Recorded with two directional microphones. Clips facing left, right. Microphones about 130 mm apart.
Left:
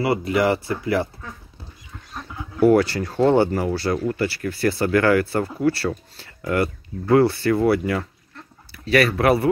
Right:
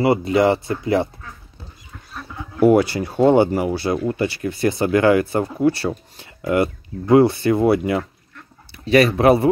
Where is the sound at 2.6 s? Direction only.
15° right (ahead or behind).